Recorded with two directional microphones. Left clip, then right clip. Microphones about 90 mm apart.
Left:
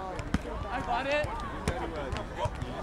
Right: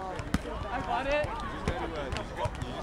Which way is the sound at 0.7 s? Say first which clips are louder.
Even; 30° left (ahead or behind).